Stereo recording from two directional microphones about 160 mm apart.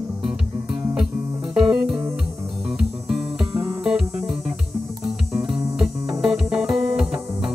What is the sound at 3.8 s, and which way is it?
Music, 5° right (ahead or behind).